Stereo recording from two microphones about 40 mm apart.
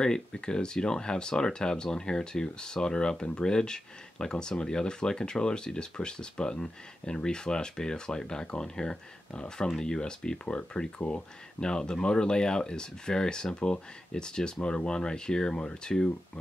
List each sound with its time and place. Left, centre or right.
0.0 s speech: centre
11.0 s speech: left
11.6 s speech: centre